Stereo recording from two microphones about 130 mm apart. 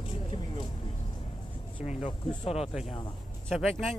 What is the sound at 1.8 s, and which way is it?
Speech, 60° left (ahead or behind).